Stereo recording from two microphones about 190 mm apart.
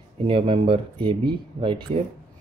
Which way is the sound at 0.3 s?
25° right (ahead or behind).